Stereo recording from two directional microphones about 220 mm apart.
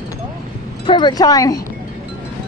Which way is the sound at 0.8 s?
20° left (ahead or behind).